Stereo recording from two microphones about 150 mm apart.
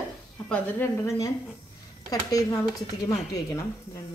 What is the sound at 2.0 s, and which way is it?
Speech, 25° left (ahead or behind).